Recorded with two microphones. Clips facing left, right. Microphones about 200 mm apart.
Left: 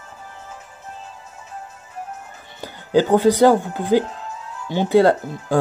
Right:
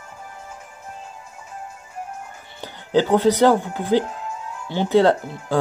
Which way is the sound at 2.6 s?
10° left (ahead or behind).